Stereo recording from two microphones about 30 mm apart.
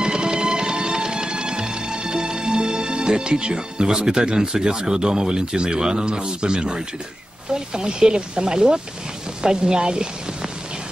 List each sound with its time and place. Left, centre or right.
0.0 s music: right
7.5 s a woman's voice: right